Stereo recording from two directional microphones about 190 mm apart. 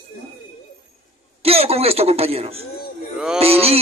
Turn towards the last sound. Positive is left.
turn(degrees=-30)  # may be behind; listen again after turning